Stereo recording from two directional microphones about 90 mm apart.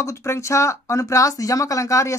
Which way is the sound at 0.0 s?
30° left (ahead or behind).